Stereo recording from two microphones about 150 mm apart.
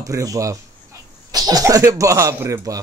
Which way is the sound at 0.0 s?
20° right (ahead or behind).